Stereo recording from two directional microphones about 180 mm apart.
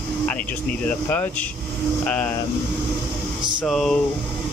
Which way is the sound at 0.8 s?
10° left (ahead or behind).